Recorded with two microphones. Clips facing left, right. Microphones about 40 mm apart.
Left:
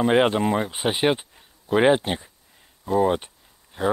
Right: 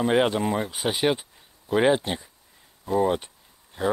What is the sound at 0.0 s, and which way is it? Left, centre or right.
Speech, left.